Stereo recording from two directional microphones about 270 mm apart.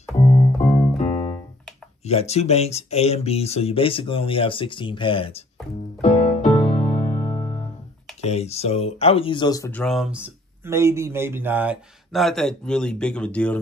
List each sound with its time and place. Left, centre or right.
0.2 s keyboard: left
0.9 s music: left
2.0 s speech: left
5.9 s music: left
8.2 s speech: left; by 13.6 s centre